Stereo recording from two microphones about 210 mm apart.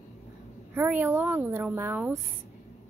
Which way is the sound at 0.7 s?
10° right (ahead or behind).